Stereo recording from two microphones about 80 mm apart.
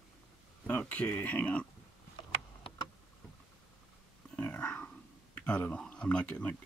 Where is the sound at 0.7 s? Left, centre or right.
Centre.